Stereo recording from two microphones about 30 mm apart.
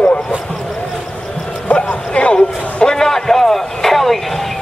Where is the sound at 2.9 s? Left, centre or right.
Centre.